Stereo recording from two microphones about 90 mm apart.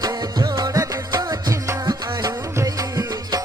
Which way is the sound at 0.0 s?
45° right (ahead or behind).